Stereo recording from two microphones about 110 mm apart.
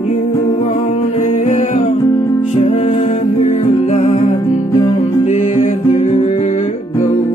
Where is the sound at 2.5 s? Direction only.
80° left.